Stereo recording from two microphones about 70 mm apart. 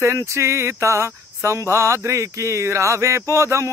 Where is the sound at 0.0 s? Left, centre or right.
Right.